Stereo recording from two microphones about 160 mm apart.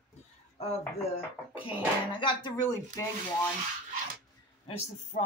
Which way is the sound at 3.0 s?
20° left (ahead or behind).